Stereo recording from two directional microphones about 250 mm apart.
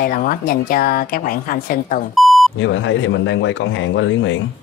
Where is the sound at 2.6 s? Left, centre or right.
Left.